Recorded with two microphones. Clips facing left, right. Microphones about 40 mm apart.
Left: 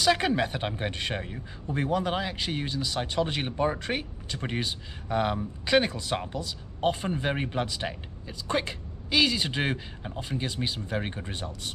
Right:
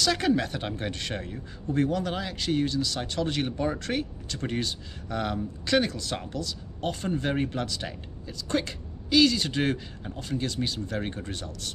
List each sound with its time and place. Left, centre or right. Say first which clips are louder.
0.0 s speech: left 1 dB; centre